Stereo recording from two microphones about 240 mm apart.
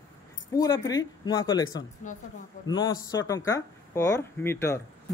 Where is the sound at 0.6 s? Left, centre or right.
Centre.